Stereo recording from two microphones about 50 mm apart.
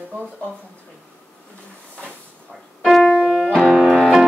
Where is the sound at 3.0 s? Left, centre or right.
Centre.